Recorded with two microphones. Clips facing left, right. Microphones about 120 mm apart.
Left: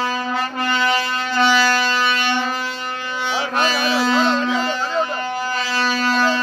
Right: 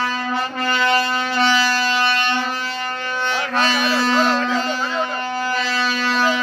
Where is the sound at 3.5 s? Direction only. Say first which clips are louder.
Even; 10° left (ahead or behind).